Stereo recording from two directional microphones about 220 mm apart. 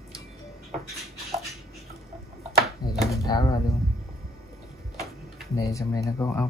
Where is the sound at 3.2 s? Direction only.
15° left (ahead or behind).